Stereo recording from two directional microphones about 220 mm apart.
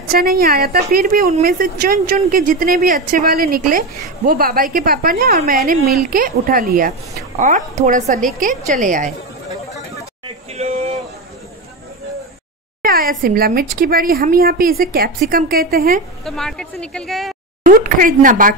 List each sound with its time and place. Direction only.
0.1 s a woman's voice: 40° right (ahead or behind)
10.2 s a sound: 30° right (ahead or behind)
12.8 s a woman's voice: 40° right (ahead or behind)
16.3 s speech: centre (ahead or behind)
17.6 s a woman's voice: 40° right (ahead or behind)